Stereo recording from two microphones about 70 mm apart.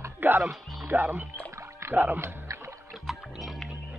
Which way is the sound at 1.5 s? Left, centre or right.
Right.